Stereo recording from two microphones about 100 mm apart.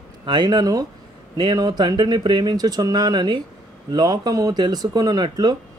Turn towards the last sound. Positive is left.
turn(degrees=-45)  # may be behind; listen again after turning